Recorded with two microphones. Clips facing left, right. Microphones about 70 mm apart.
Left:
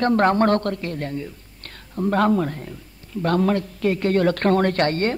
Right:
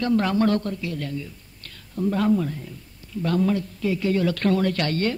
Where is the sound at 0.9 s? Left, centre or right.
Left.